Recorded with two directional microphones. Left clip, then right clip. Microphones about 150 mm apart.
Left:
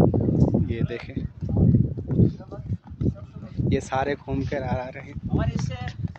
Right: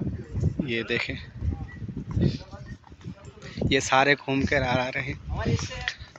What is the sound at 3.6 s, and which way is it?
Speech, 15° left (ahead or behind).